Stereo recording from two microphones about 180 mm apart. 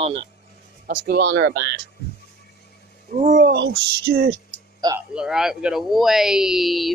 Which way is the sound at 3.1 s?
45° right (ahead or behind).